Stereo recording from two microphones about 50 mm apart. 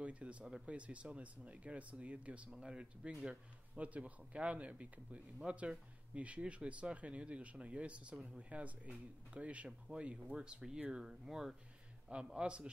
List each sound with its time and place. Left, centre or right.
0.0 s speech: right
2.5 s speech: centre
3.3 s speech: right
9.7 s speech: centre
12.3 s speech: centre